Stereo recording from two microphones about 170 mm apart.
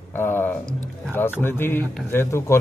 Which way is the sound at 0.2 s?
10° left (ahead or behind).